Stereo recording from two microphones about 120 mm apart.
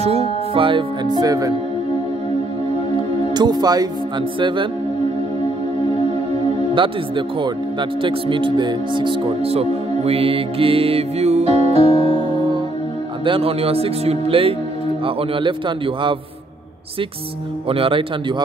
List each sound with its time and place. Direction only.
0.0 s speech: 60° right (ahead or behind); by 1.5 s 30° right (ahead or behind)
3.3 s speech: 35° right (ahead or behind)
6.7 s speech: 45° right (ahead or behind)
17.6 s speech: 50° right (ahead or behind)